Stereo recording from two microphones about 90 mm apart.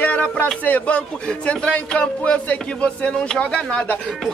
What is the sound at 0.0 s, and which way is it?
A man's voice, 15° left (ahead or behind).